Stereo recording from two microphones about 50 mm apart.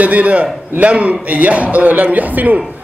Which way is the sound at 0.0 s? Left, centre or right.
Right.